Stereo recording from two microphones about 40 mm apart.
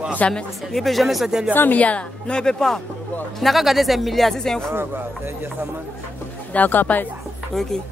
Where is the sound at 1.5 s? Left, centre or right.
Left.